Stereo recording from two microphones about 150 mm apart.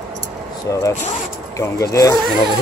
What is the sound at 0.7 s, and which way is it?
Speech, 20° left (ahead or behind).